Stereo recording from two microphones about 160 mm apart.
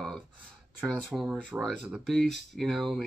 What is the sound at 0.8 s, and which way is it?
Speech, 5° right (ahead or behind).